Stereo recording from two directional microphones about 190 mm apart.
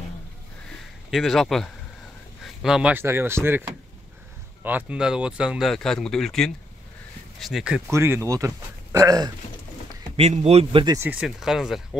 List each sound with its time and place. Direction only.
1.1 s speech: centre (ahead or behind)
4.6 s speech: 10° right (ahead or behind)
10.1 s speech: 35° right (ahead or behind)
11.0 s speech: 5° right (ahead or behind)